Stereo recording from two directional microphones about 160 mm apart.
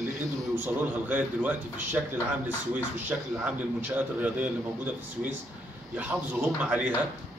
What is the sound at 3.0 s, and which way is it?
A man's voice, 10° right (ahead or behind).